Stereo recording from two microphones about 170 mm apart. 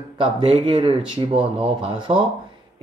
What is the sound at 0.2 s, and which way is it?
Speech, 30° right (ahead or behind).